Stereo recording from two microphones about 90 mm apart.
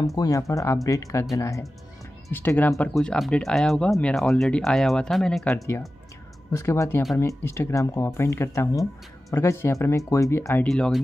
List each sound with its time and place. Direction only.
0.0 s speech: 40° left (ahead or behind)
2.3 s speech: 20° left (ahead or behind)
2.9 s speech: 5° left (ahead or behind)
6.5 s speech: 35° left (ahead or behind)
10.7 s speech: 5° left (ahead or behind)